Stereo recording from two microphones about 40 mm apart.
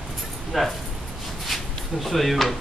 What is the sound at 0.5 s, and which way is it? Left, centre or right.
Dog, centre.